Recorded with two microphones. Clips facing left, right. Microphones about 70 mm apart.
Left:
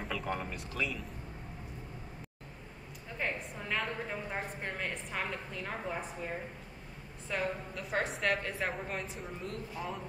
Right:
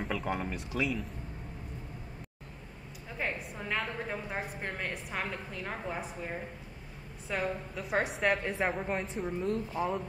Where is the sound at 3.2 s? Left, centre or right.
Centre.